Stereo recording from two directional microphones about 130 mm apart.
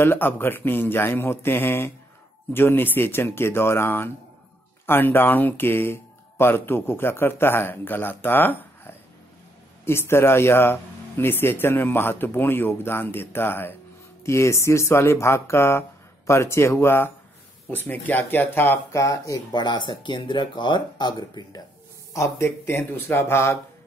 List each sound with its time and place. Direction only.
0.0 s speech: 15° left (ahead or behind)